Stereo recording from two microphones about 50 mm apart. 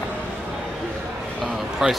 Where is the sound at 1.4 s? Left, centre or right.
Centre.